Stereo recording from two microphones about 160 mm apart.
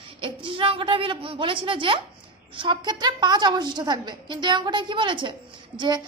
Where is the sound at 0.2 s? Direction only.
35° right (ahead or behind).